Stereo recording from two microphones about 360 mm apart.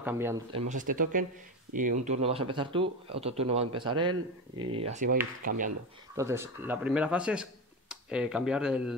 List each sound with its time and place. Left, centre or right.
0.0 s speech: centre; by 5.6 s right
6.1 s speech: centre